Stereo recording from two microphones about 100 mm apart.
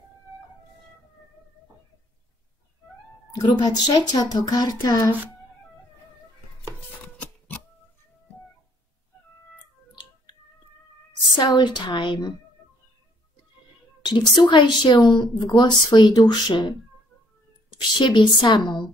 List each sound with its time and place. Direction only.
3.3 s speech: 40° left (ahead or behind)
7.2 s printer: 15° left (ahead or behind)
11.5 s speech: 50° left (ahead or behind)
14.0 s a woman's voice: 50° left (ahead or behind)